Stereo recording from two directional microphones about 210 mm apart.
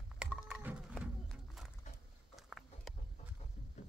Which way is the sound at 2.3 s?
Centre (ahead or behind).